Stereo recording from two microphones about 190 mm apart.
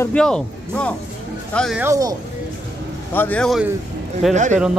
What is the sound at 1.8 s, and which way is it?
Speech, 15° right (ahead or behind).